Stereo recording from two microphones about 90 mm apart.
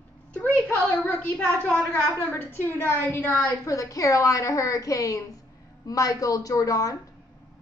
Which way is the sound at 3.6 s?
40° left (ahead or behind).